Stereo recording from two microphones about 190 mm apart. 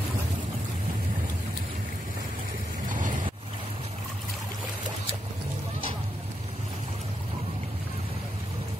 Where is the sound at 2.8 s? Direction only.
45° right (ahead or behind).